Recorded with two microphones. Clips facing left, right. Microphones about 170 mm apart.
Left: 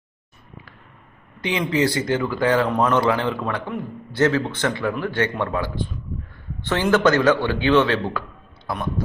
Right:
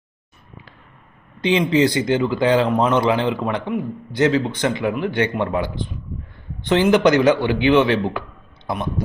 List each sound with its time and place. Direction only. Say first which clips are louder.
1.4 s speech: right 5 dB; 25° right (ahead or behind)